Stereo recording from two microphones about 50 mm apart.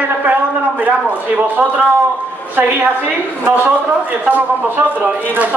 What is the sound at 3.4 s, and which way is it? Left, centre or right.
A man's voice, right.